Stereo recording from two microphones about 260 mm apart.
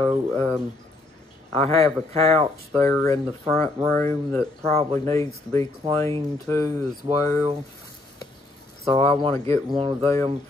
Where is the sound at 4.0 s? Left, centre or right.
Centre.